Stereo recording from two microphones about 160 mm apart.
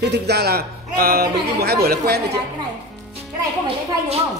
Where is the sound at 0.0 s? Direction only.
90° right.